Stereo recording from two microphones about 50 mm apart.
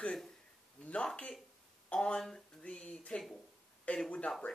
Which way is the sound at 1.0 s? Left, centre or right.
Centre.